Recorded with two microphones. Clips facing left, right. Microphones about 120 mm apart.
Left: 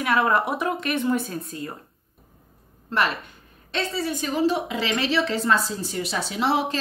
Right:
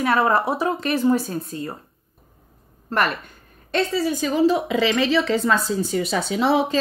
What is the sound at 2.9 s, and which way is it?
Speech, 50° right (ahead or behind).